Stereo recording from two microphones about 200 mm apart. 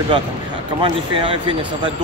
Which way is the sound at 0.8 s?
25° right (ahead or behind).